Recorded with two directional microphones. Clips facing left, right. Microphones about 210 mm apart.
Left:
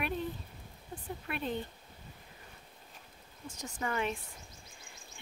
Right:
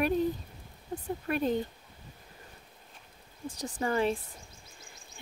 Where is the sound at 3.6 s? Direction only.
35° right (ahead or behind).